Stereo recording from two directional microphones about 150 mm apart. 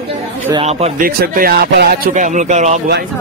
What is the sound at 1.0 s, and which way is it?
Speech, 75° right (ahead or behind).